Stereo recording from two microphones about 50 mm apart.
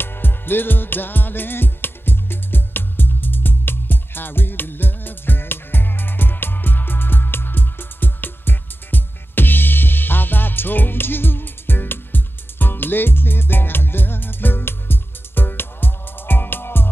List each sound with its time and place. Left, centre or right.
0.0 s music: left